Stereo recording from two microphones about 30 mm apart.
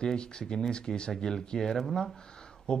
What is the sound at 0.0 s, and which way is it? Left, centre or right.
Speech, left.